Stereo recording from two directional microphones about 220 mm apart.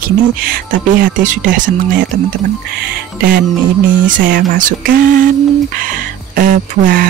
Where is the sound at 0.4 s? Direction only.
40° right (ahead or behind).